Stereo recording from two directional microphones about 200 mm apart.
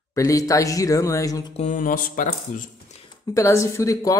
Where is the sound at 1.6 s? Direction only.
40° left (ahead or behind).